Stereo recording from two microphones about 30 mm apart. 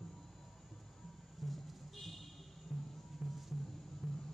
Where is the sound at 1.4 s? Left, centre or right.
Centre.